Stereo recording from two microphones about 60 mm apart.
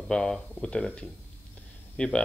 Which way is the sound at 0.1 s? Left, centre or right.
Centre.